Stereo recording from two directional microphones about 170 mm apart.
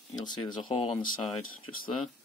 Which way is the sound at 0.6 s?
30° left (ahead or behind).